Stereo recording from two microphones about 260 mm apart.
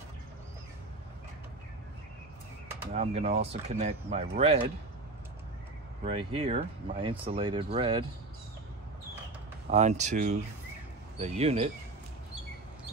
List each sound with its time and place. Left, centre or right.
2.9 s speech: right
6.0 s speech: right
9.7 s speech: right